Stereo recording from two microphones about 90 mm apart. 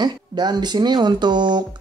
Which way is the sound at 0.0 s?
50° right (ahead or behind).